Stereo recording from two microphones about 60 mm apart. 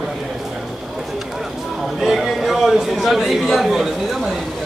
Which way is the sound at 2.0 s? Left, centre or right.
Centre.